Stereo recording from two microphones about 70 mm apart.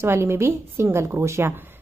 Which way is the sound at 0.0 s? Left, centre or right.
Right.